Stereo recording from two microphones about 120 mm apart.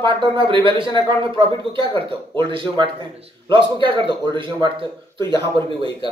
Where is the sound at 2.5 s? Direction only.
45° right (ahead or behind).